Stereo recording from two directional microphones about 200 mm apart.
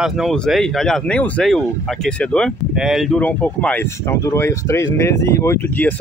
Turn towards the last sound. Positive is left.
turn(degrees=10)  # may be behind; listen again after turning